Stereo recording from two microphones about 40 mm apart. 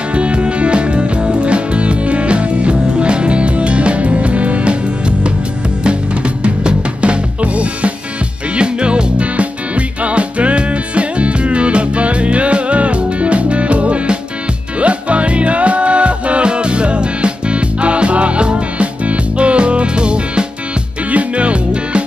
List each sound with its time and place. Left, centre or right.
0.1 s music: right
5.9 s music: right